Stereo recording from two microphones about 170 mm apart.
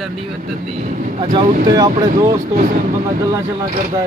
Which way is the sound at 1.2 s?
30° right (ahead or behind).